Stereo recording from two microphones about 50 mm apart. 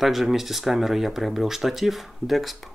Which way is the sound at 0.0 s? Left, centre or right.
Centre.